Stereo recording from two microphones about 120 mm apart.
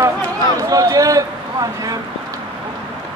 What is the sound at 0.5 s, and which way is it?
A man's voice, 30° right (ahead or behind).